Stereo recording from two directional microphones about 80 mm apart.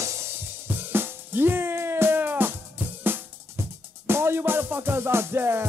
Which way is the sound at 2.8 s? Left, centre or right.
Right.